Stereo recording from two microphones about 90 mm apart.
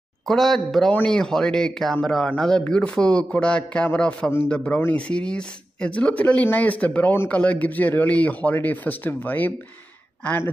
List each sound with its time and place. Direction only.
0.3 s speech: 5° left (ahead or behind); by 10.5 s 25° left (ahead or behind)